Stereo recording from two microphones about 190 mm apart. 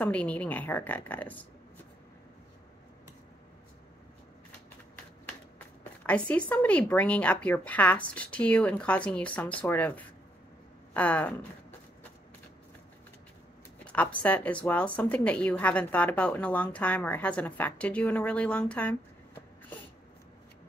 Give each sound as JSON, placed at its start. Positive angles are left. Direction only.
{"t": 0.0, "sound": "a woman's voice", "side_deg": 5}
{"t": 6.0, "sound": "a woman's voice", "side_deg": 5}
{"t": 13.8, "sound": "a woman's voice", "side_deg": 10}